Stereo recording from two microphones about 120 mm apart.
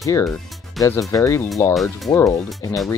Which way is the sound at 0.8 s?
Centre (ahead or behind).